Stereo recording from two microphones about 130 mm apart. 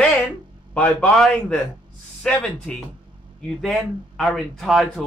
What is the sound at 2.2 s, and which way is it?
A man's voice, 5° left (ahead or behind).